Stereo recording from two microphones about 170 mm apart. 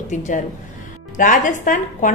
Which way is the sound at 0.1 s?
45° left (ahead or behind).